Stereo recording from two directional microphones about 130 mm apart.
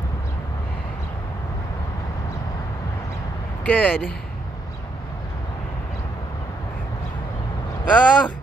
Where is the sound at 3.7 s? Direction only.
10° left (ahead or behind).